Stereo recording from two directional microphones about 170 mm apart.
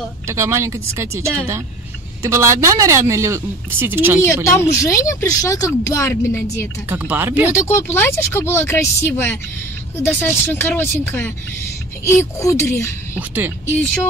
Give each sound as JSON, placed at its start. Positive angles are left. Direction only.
{"t": 0.3, "sound": "speech", "side_deg": -15}
{"t": 4.2, "sound": "speech", "side_deg": 15}
{"t": 6.9, "sound": "speech", "side_deg": -10}
{"t": 7.6, "sound": "speech", "side_deg": 15}
{"t": 13.1, "sound": "speech", "side_deg": -10}